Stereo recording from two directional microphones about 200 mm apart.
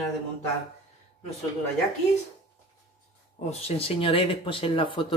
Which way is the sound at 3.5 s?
30° left (ahead or behind).